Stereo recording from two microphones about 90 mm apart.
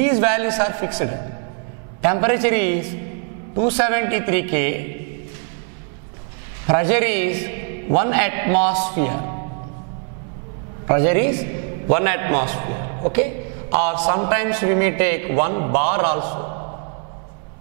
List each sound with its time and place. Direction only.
0.0 s a man's voice: 10° right (ahead or behind)
6.7 s a man's voice: 10° right (ahead or behind)
10.9 s a man's voice: 10° right (ahead or behind)